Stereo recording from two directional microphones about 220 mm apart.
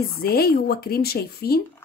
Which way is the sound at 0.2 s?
45° left (ahead or behind).